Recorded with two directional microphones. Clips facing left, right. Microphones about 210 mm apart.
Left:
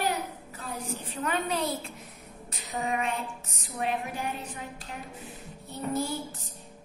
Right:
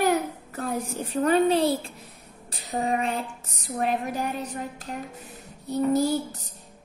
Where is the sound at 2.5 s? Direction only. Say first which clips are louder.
Right 5 dB; 35° right (ahead or behind).